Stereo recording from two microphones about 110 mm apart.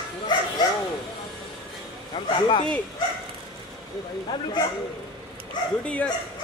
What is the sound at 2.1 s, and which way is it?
Speech, 60° left (ahead or behind).